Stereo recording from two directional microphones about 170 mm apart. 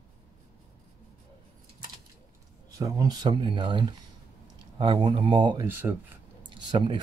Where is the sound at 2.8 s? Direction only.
20° right (ahead or behind).